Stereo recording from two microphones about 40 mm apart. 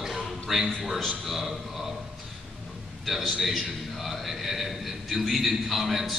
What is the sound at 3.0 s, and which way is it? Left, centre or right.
Speech, centre.